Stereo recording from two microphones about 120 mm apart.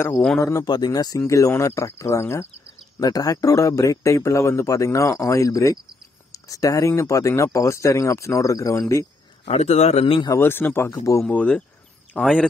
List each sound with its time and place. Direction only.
0.4 s a man's voice: 25° left (ahead or behind)
9.5 s a man's voice: 65° left (ahead or behind)
10.2 s a man's voice: 25° left (ahead or behind)